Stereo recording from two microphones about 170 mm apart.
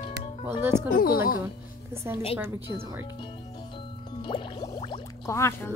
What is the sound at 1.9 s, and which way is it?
A woman's voice, 15° right (ahead or behind).